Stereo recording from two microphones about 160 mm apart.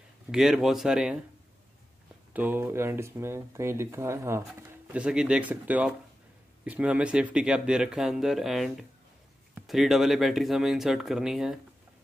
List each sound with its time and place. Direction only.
0.3 s speech: 5° right (ahead or behind)
2.3 s speech: 10° right (ahead or behind)
5.0 s speech: 5° right (ahead or behind)